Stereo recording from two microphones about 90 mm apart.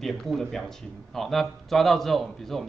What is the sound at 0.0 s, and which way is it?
Speech, 5° left (ahead or behind).